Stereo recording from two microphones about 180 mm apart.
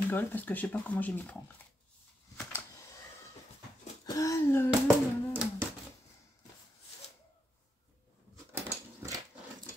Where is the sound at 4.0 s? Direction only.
20° left (ahead or behind).